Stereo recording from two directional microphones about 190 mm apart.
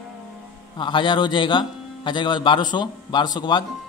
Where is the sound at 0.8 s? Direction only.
25° left (ahead or behind).